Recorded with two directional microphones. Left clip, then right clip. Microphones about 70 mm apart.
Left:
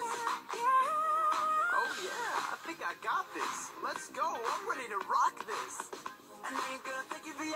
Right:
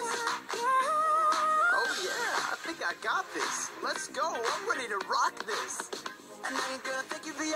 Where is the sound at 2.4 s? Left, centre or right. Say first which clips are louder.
Right 4 dB; right.